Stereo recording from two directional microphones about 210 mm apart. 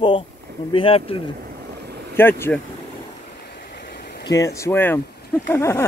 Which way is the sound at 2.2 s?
10° left (ahead or behind).